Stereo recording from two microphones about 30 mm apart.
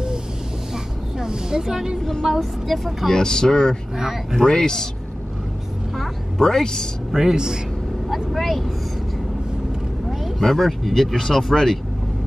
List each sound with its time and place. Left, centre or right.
1.1 s a woman's voice: centre
2.2 s speech: centre
3.1 s speech: left
3.9 s speech: centre
4.4 s speech: left
6.3 s speech: centre
7.1 s a man's voice: centre
8.1 s speech: centre
10.4 s speech: centre